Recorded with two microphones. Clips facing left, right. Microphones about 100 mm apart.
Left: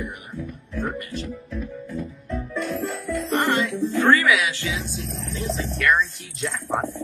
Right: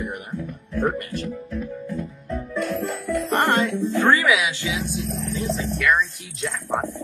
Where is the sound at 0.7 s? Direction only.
55° right (ahead or behind).